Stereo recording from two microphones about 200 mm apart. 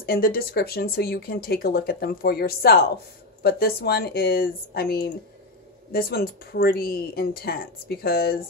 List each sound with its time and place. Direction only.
0.0 s speech: 50° left (ahead or behind)